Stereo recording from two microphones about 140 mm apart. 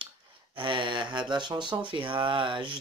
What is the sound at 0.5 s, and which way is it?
Speech, 35° right (ahead or behind).